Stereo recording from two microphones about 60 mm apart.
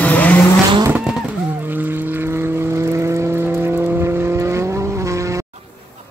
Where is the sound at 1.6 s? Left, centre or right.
Right.